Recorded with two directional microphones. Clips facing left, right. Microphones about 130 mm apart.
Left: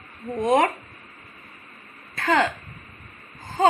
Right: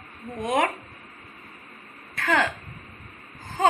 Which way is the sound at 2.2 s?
15° left (ahead or behind).